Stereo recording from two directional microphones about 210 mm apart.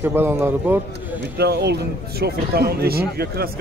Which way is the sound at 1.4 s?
50° right (ahead or behind).